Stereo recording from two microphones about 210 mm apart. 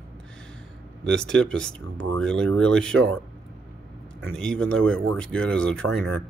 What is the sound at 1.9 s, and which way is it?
Speech, 65° right (ahead or behind).